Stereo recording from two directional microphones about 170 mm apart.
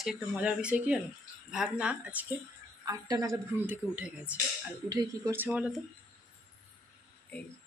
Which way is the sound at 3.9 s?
10° right (ahead or behind).